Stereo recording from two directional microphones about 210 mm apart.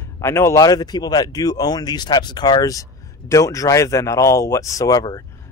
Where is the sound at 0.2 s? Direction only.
10° left (ahead or behind).